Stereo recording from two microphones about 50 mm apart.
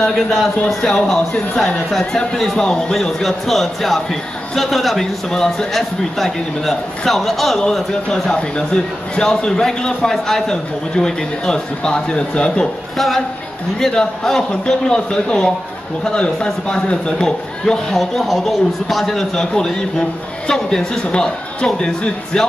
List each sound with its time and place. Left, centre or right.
0.0 s a man's voice: centre
8.1 s a man's voice: centre
12.9 s a man's voice: centre
17.9 s a man's voice: centre